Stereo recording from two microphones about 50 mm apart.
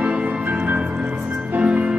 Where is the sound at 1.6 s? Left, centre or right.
Right.